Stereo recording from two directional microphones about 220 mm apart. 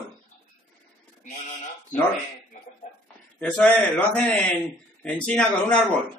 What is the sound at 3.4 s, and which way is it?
A man's voice, 5° left (ahead or behind).